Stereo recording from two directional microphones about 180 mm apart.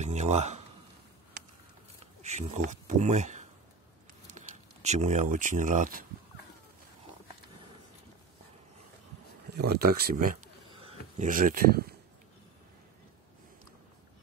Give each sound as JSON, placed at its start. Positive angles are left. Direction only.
{"t": 0.0, "sound": "speech", "side_deg": -40}
{"t": 2.2, "sound": "speech", "side_deg": -40}
{"t": 9.6, "sound": "speech", "side_deg": -60}
{"t": 10.8, "sound": "a sound", "side_deg": -35}
{"t": 11.2, "sound": "speech", "side_deg": -50}